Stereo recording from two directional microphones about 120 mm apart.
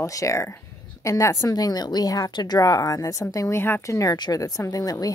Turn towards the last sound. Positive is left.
turn(degrees=30)  # may be behind; listen again after turning